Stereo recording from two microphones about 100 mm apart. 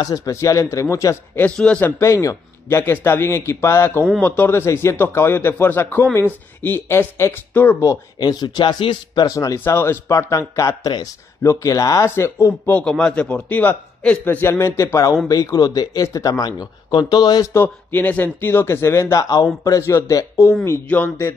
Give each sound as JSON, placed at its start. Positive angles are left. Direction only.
{"t": 0.0, "sound": "speech", "side_deg": 40}
{"t": 1.4, "sound": "a man's voice", "side_deg": 15}
{"t": 1.9, "sound": "speech", "side_deg": 30}
{"t": 8.2, "sound": "speech", "side_deg": 45}
{"t": 12.7, "sound": "a man's voice", "side_deg": 10}
{"t": 17.6, "sound": "speech", "side_deg": 20}
{"t": 20.6, "sound": "speech", "side_deg": 20}